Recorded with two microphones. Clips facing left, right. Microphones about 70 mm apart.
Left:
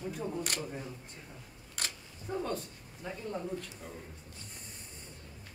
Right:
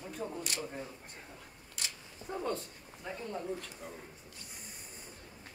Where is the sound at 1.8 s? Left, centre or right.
Left.